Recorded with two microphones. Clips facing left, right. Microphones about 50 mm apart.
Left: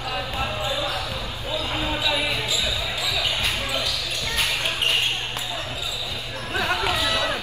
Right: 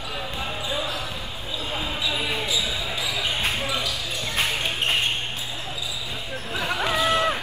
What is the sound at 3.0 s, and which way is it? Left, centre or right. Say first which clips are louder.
Basketball bounce: even; right.